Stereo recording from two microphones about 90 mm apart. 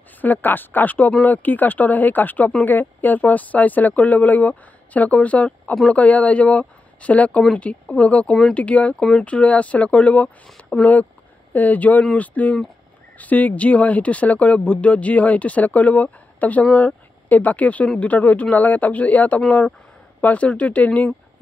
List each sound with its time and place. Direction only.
0.2 s speech: 20° left (ahead or behind)